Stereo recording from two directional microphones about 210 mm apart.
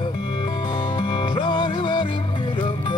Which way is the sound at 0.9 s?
25° left (ahead or behind).